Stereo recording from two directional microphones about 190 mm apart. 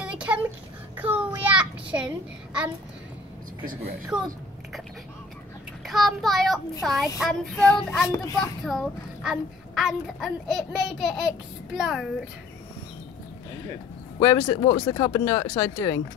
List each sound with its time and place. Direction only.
0.0 s a sound: 5° right (ahead or behind)
0.9 s child singing: 10° right (ahead or behind)
4.1 s a child's voice: 5° right (ahead or behind)
5.9 s a child's voice: centre (ahead or behind)
14.2 s speech: 20° left (ahead or behind)